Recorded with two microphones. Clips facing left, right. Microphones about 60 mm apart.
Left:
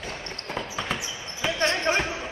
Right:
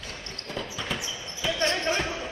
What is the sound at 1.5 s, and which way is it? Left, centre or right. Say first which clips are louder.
Basketball bounce: left 1 dB; centre.